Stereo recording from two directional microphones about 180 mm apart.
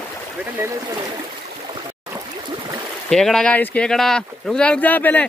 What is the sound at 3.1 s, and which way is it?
Speech, 5° left (ahead or behind).